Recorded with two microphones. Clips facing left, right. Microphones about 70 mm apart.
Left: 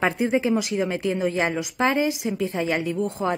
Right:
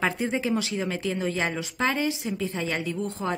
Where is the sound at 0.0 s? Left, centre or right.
Centre.